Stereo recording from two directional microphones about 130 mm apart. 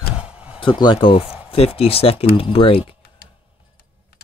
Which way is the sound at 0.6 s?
40° left (ahead or behind).